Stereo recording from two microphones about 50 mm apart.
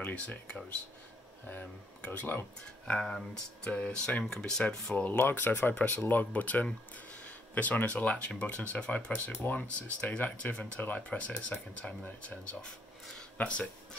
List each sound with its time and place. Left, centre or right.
2.0 s speech: left
2.9 s speech: centre
3.7 s speech: left
4.6 s speech: left
5.2 s speech: left
6.3 s speech: left